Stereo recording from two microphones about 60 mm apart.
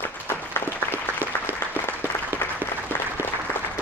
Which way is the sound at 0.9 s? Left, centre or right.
Right.